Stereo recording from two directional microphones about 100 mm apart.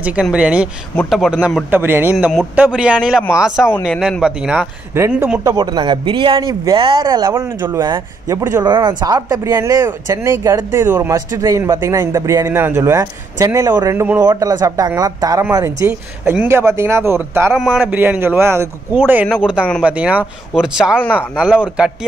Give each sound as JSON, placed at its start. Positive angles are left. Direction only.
{"t": 0.0, "sound": "a man's voice", "side_deg": -10}
{"t": 1.7, "sound": "a man's voice", "side_deg": -20}
{"t": 5.4, "sound": "a man's voice", "side_deg": -35}
{"t": 6.0, "sound": "a man's voice", "side_deg": -60}
{"t": 6.4, "sound": "speech", "side_deg": -45}
{"t": 7.3, "sound": "a man's voice", "side_deg": -25}
{"t": 8.6, "sound": "a man's voice", "side_deg": -50}
{"t": 17.6, "sound": "a man's voice", "side_deg": -5}
{"t": 17.8, "sound": "a man's voice", "side_deg": -15}